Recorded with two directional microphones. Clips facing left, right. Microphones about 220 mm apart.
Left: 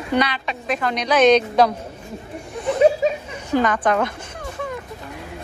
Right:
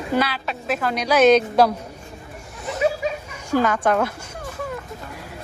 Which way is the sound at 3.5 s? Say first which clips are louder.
Even; 10° right (ahead or behind).